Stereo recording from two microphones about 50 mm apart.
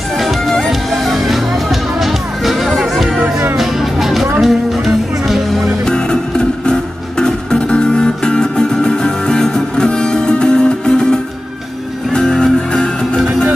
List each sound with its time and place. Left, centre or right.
0.2 s music: centre
5.9 s music: centre